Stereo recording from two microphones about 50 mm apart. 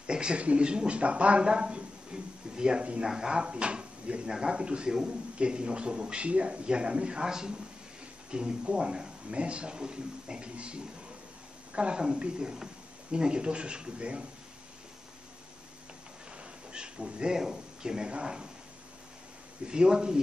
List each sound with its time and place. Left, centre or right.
0.0 s a woman's voice: centre
16.7 s speech: centre
19.7 s a woman's voice: centre